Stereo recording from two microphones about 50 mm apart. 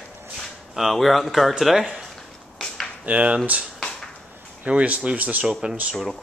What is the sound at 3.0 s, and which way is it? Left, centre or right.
Speech, right.